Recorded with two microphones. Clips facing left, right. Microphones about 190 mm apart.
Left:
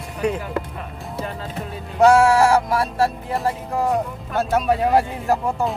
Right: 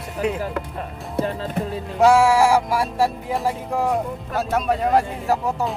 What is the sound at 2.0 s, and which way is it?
Music, 5° right (ahead or behind).